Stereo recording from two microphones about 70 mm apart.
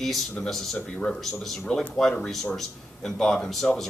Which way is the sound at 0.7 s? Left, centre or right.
Centre.